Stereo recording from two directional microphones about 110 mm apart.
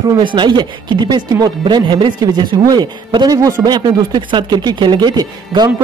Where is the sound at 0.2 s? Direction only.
45° right (ahead or behind).